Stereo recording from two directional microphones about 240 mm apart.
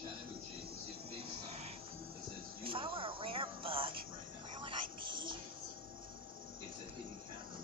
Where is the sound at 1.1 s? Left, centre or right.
Right.